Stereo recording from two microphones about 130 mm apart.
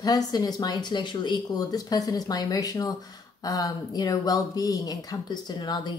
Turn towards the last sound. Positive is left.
turn(degrees=35)  # may be behind; listen again after turning